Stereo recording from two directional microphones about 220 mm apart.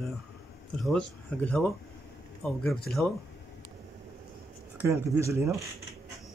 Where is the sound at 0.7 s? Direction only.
5° left (ahead or behind).